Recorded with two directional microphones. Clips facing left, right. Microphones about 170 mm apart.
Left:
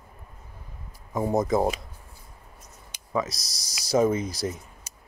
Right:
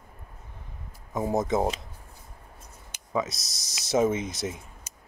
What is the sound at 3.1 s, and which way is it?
Speech, 5° right (ahead or behind).